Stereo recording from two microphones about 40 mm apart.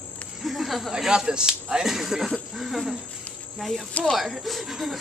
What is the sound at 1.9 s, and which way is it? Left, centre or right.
Speech, centre.